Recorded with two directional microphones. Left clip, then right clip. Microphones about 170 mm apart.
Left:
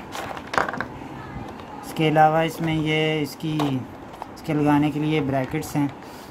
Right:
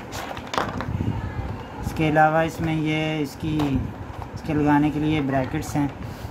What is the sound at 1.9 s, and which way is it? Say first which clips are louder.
Speech: left 1 dB; 10° left (ahead or behind).